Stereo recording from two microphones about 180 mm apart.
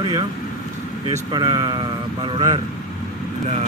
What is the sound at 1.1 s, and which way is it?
A man's voice, 20° right (ahead or behind).